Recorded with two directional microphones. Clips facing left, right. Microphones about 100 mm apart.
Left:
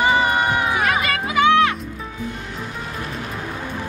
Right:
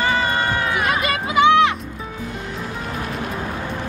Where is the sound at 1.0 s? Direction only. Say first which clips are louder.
Right 5 dB; 20° right (ahead or behind).